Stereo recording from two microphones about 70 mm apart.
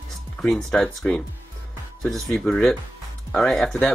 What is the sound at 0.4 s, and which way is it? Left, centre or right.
Speech, centre.